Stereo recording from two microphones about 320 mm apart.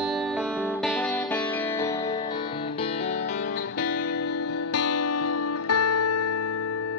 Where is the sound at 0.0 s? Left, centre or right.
Centre; by 4.2 s left.